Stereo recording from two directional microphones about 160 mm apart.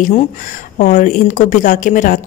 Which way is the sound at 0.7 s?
50° left (ahead or behind).